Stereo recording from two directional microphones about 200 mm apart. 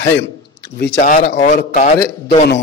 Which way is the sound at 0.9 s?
45° left (ahead or behind).